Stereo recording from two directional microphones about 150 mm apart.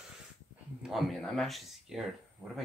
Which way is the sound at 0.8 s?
Centre (ahead or behind).